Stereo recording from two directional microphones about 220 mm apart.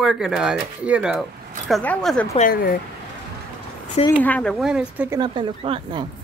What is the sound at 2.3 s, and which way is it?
Speech, 40° left (ahead or behind).